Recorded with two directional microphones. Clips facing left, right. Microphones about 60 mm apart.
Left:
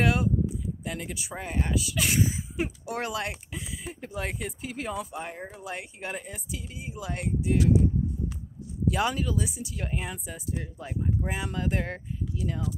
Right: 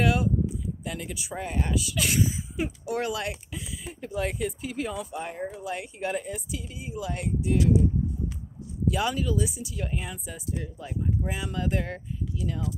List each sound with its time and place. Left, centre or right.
0.0 s a sound: left
0.8 s speech: left
1.3 s speech: centre
5.1 s speech: centre
5.5 s speech: left
8.9 s speech: left
9.8 s speech: left